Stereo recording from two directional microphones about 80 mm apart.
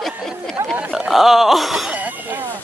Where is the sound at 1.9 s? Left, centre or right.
Centre.